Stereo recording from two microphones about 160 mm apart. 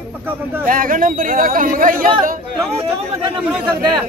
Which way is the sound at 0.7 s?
60° right (ahead or behind).